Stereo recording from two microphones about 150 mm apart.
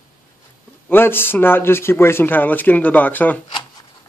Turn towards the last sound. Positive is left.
turn(degrees=10)  # may be behind; listen again after turning